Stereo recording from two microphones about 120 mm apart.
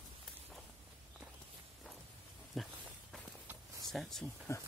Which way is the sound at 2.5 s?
Centre (ahead or behind).